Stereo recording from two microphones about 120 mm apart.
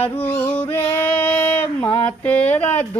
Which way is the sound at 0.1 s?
15° left (ahead or behind).